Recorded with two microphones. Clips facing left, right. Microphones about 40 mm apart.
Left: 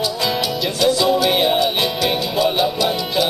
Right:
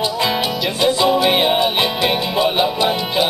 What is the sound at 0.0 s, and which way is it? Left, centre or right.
Music, right.